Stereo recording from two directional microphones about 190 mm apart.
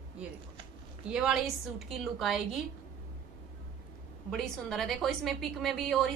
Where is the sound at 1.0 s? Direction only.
5° right (ahead or behind).